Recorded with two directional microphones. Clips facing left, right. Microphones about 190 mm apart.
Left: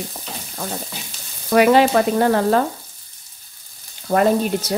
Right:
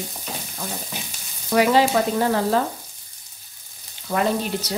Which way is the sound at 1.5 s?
60° left (ahead or behind).